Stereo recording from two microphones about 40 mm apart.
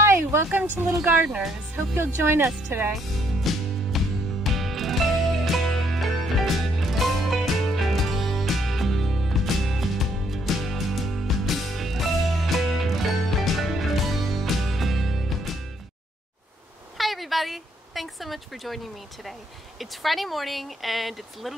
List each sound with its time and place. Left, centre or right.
0.0 s music: right
0.8 s speech: centre
2.0 s speech: right
2.9 s music: centre
16.9 s speech: centre
19.8 s speech: centre